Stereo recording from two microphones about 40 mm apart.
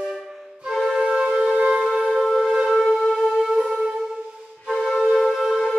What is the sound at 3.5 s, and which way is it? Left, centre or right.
Music, centre.